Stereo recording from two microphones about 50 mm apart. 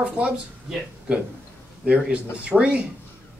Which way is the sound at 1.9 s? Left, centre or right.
Right.